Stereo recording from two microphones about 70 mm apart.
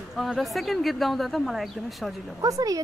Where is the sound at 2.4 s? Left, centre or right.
Right.